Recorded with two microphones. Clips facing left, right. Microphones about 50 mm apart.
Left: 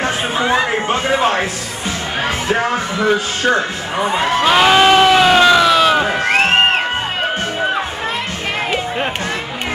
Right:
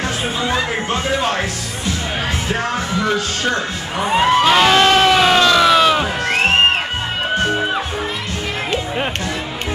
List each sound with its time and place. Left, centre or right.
0.0 s speech: left
2.5 s speech: centre
4.2 s crowd: centre
5.6 s a sound: centre